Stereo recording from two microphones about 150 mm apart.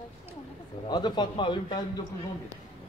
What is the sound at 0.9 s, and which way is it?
Speech, 30° left (ahead or behind).